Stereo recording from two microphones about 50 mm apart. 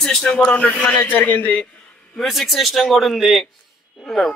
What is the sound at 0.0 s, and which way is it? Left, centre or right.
Speech, centre.